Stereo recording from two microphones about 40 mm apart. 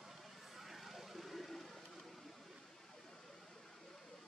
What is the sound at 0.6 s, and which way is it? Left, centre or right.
Vehicle, centre.